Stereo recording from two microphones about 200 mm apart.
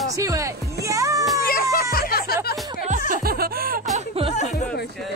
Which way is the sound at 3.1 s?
50° right (ahead or behind).